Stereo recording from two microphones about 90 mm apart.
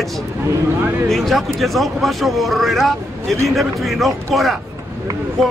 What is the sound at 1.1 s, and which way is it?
A man's voice, centre (ahead or behind).